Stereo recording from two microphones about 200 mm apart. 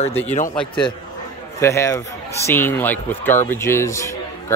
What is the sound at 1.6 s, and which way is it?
A man's voice, 15° left (ahead or behind).